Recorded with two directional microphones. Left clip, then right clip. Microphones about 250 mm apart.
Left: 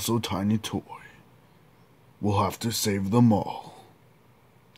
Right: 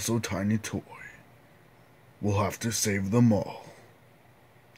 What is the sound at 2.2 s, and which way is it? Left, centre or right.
Speech, left.